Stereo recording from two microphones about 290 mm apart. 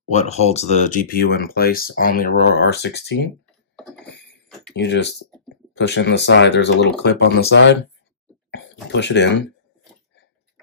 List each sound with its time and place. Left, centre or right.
0.1 s speech: left
4.7 s speech: left
8.9 s speech: left